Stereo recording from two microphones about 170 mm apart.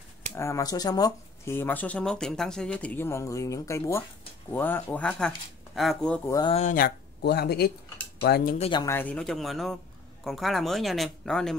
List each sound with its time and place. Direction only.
0.3 s speech: 15° left (ahead or behind)
6.5 s speech: 50° left (ahead or behind); by 7.7 s 70° left (ahead or behind)
8.5 s speech: 35° left (ahead or behind)
8.8 s speech: 10° left (ahead or behind)